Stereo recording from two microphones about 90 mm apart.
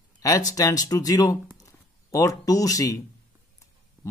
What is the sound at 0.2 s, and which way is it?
Speech, 40° left (ahead or behind).